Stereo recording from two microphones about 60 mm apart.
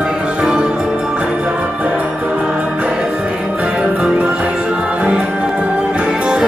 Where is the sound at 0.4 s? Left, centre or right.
Centre.